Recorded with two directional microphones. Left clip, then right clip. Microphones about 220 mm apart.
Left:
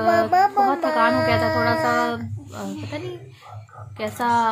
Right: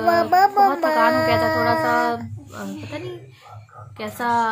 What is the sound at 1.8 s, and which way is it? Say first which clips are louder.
Speech: right 1 dB; centre (ahead or behind).